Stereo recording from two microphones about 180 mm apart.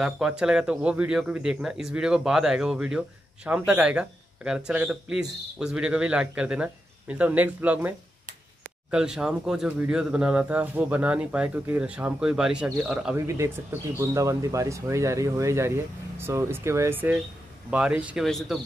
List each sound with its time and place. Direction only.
0.0 s a man's voice: 5° right (ahead or behind)
8.9 s a man's voice: 5° right (ahead or behind)